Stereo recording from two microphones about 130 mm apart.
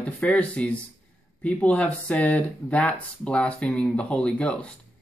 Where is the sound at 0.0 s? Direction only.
10° left (ahead or behind).